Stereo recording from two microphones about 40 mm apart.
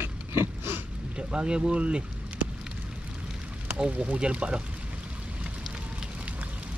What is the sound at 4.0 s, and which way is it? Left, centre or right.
Speech, right.